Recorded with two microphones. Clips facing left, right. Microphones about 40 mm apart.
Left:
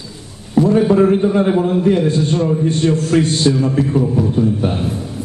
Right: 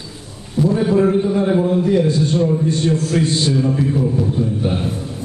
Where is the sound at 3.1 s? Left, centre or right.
Left.